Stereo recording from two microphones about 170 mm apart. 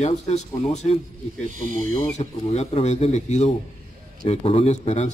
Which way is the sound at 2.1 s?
40° left (ahead or behind).